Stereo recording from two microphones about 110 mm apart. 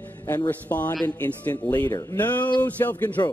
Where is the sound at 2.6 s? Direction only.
15° left (ahead or behind).